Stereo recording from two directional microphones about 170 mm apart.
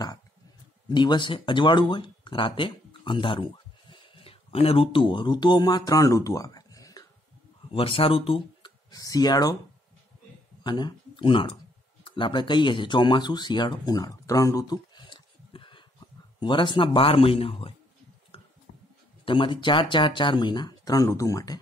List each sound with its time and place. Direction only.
0.8 s speech: 25° left (ahead or behind)
7.7 s speech: 35° left (ahead or behind)
8.9 s speech: 20° left (ahead or behind)
10.6 s a man's voice: 25° left (ahead or behind)
18.3 s a sound: 30° left (ahead or behind)
19.2 s speech: 30° left (ahead or behind)